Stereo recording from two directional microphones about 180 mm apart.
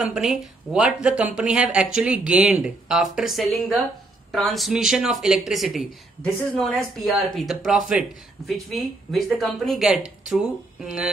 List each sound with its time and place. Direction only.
0.0 s speech: centre (ahead or behind)